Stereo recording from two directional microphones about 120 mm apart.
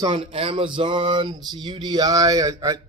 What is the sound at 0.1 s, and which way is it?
Speech, 50° right (ahead or behind).